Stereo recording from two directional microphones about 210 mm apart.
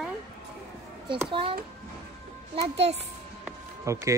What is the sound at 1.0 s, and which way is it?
Speech, 25° right (ahead or behind).